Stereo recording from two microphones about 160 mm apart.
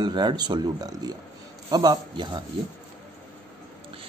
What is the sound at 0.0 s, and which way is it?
Speech, 30° right (ahead or behind).